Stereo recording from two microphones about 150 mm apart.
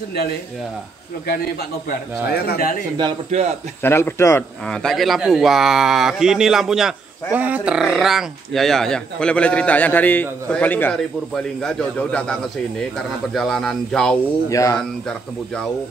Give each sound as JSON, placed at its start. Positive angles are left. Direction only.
{"t": 1.9, "sound": "speech", "side_deg": 90}
{"t": 3.3, "sound": "speech", "side_deg": -45}
{"t": 3.8, "sound": "speech", "side_deg": 15}
{"t": 4.6, "sound": "speech", "side_deg": 5}
{"t": 14.5, "sound": "speech", "side_deg": 20}
{"t": 15.0, "sound": "speech", "side_deg": 5}